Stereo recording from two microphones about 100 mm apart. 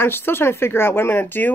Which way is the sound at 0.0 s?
20° left (ahead or behind).